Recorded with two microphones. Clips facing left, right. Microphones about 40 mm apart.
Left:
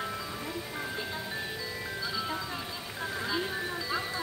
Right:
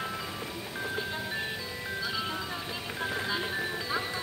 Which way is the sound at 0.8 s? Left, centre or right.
Centre.